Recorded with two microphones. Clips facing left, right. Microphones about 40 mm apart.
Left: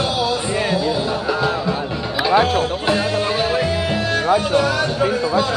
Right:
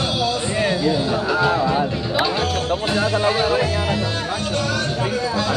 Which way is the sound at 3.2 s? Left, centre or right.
Centre.